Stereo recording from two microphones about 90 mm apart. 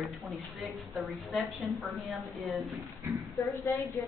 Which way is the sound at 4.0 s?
40° left (ahead or behind).